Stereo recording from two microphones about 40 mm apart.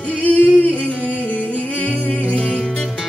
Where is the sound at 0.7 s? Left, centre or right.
Left.